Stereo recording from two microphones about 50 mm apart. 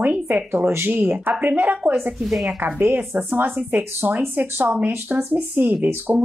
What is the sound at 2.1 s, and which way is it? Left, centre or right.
Speech, centre.